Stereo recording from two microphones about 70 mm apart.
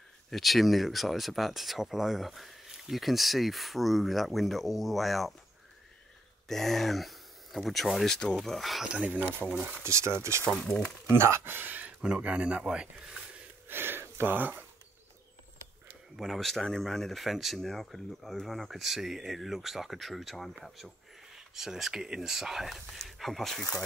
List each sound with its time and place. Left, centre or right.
0.3 s speech: centre
6.4 s speech: centre
8.8 s speech: centre
9.4 s speech: centre
9.8 s speech: right
10.4 s speech: centre
11.1 s speech: right
12.0 s speech: centre
13.7 s a sound: right
16.2 s speech: centre